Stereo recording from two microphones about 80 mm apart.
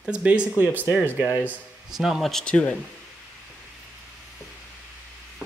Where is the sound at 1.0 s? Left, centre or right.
Right.